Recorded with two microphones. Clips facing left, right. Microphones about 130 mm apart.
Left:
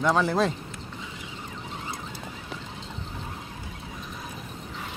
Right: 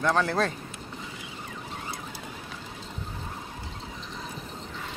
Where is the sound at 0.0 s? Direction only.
10° left (ahead or behind).